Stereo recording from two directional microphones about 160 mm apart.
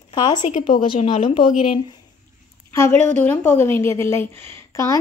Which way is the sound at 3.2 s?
10° left (ahead or behind).